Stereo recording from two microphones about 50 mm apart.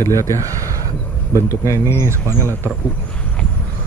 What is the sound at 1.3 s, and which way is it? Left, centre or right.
Speech, left.